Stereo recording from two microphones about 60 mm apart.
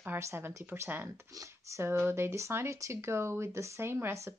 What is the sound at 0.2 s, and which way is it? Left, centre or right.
Speech, right.